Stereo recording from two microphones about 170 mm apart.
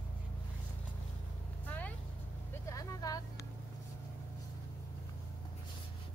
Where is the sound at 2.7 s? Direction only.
20° left (ahead or behind).